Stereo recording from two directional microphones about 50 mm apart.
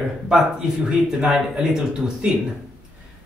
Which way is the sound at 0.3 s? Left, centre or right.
Centre.